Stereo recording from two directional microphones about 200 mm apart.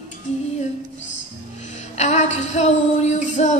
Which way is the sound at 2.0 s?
35° left (ahead or behind).